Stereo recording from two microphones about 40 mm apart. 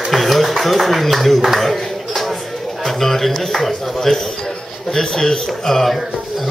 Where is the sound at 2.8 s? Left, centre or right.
Centre.